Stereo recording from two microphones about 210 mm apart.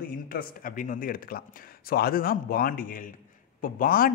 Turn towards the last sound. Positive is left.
turn(degrees=40)  # may be behind; listen again after turning